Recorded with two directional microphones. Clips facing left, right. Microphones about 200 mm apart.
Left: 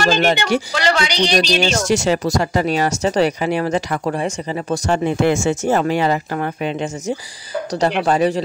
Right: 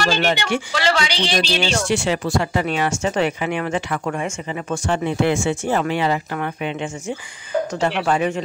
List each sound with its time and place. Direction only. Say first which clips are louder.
0.0 s speech: left 4 dB; 45° left (ahead or behind)